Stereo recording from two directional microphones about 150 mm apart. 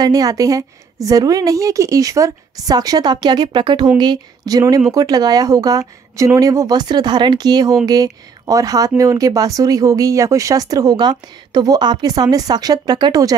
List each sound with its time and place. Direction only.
0.0 s speech: 25° right (ahead or behind)